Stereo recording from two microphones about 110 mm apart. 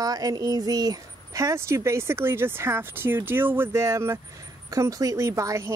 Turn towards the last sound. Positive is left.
turn(degrees=-30)  # may be behind; listen again after turning